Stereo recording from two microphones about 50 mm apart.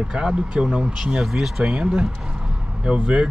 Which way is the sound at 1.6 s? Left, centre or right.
Centre.